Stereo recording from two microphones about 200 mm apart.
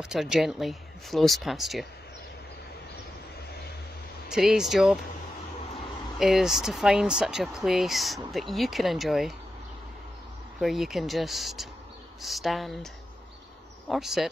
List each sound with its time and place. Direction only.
0.0 s speech: centre (ahead or behind)
4.3 s speech: centre (ahead or behind)
6.1 s speech: centre (ahead or behind)
10.6 s speech: centre (ahead or behind)